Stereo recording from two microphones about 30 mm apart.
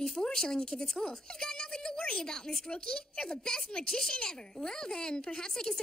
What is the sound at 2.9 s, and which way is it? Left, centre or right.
A woman's voice, left.